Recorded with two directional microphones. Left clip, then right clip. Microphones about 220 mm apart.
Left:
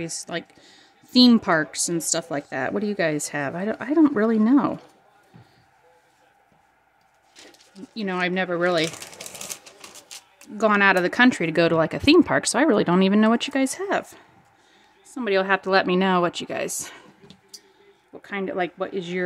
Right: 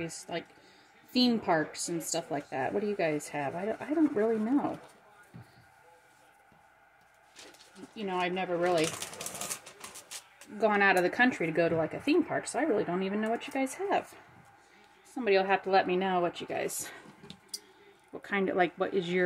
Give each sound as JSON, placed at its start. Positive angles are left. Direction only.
{"t": 0.0, "sound": "speech", "side_deg": 30}
{"t": 7.9, "sound": "speech", "side_deg": 35}
{"t": 10.6, "sound": "speech", "side_deg": 30}
{"t": 15.1, "sound": "speech", "side_deg": 25}
{"t": 18.1, "sound": "speech", "side_deg": 5}